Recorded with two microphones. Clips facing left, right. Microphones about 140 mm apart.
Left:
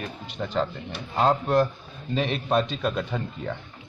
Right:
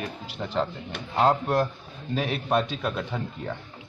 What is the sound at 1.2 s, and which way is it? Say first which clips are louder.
A man's voice: left 1 dB; 10° right (ahead or behind).